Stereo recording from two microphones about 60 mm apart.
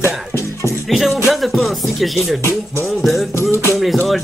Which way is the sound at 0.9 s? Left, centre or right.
Centre.